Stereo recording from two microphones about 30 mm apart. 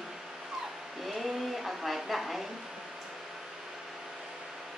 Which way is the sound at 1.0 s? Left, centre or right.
Centre.